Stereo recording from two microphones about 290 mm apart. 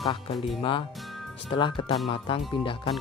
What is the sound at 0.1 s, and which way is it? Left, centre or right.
Speech, centre.